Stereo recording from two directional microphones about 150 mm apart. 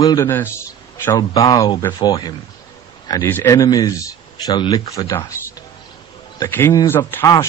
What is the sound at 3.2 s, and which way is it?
Speech, 15° left (ahead or behind).